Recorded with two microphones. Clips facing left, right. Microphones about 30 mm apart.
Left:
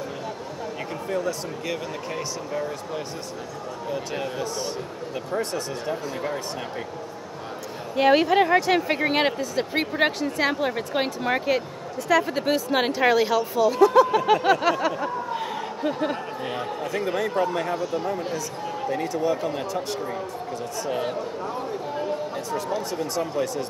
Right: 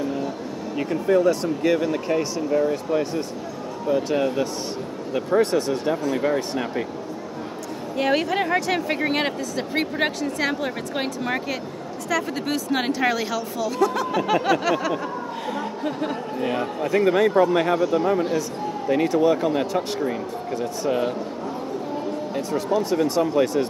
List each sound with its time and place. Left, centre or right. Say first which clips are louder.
1.0 s speech: right 9 dB; right
5.4 s speech: right 8 dB; right
7.9 s speech: left 4 dB; centre
17.0 s speech: right 7 dB; right
18.9 s speech: right 7 dB; right
22.5 s speech: right 6 dB; centre
23.3 s speech: right 6 dB; right